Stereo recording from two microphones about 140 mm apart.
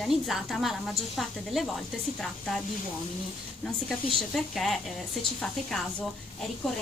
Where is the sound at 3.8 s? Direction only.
Centre (ahead or behind).